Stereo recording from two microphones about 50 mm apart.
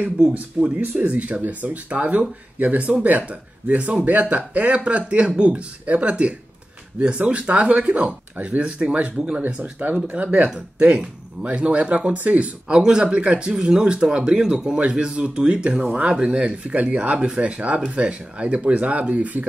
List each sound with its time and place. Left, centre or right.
0.7 s speech: right
10.5 s speech: right
14.5 s speech: centre
14.8 s speech: right
19.4 s speech: right